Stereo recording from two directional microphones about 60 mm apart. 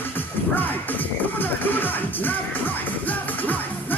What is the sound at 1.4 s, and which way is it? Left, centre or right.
Music, left.